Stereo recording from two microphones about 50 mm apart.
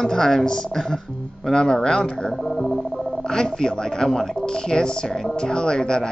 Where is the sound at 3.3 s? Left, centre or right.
Centre.